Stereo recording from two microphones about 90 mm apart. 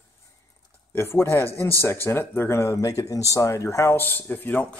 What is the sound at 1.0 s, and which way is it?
Speech, 25° left (ahead or behind).